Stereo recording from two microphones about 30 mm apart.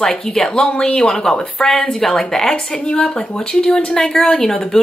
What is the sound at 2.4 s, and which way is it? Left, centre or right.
Speech, left.